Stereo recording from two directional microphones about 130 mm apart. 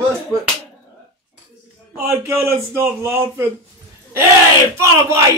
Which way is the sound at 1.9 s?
20° right (ahead or behind).